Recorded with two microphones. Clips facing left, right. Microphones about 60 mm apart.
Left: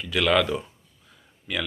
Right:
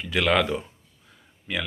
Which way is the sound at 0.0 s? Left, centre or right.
Right.